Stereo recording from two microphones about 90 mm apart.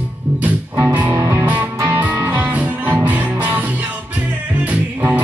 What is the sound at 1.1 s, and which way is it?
Music, 30° right (ahead or behind).